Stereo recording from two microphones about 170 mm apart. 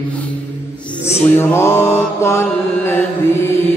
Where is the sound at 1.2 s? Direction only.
10° left (ahead or behind).